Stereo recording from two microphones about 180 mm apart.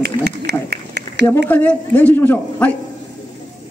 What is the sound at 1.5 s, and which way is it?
A man's voice, 10° left (ahead or behind).